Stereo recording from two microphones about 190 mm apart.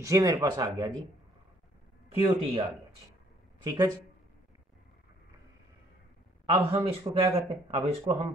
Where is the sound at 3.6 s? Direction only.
20° right (ahead or behind).